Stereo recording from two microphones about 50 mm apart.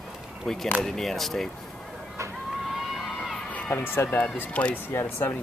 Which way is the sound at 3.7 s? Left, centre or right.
Left.